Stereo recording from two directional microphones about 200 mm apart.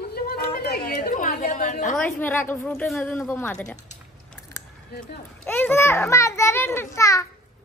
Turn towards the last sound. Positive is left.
turn(degrees=15)  # may be behind; listen again after turning